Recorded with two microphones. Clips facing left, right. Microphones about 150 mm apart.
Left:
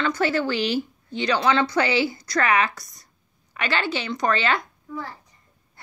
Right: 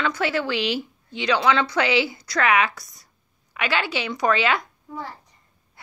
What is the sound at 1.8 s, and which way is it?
Speech, 90° right.